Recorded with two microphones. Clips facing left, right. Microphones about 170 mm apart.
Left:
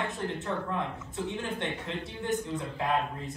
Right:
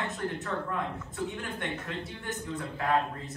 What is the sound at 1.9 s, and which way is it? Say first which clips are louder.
Speech: left 5 dB; 20° left (ahead or behind).